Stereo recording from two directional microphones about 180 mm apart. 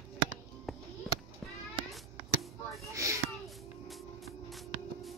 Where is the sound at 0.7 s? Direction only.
Centre (ahead or behind).